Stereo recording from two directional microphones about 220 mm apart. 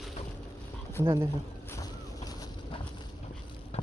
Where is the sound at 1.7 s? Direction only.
15° left (ahead or behind).